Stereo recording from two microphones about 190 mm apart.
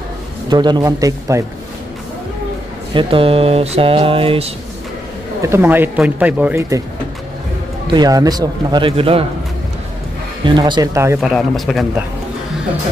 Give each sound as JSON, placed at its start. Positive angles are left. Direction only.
{"t": 0.5, "sound": "mantra", "side_deg": -25}
{"t": 2.9, "sound": "mantra", "side_deg": -25}
{"t": 5.4, "sound": "speech", "side_deg": -10}
{"t": 7.9, "sound": "mantra", "side_deg": -20}
{"t": 10.4, "sound": "mantra", "side_deg": -25}
{"t": 11.1, "sound": "speech", "side_deg": 0}